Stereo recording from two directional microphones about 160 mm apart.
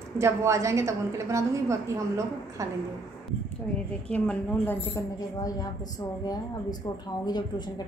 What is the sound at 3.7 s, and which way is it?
A woman's voice, 5° left (ahead or behind).